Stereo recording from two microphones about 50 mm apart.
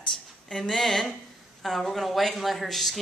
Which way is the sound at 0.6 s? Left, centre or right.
Centre.